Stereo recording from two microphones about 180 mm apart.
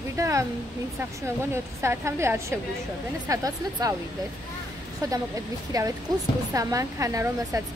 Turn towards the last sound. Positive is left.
turn(degrees=-15)  # may be behind; listen again after turning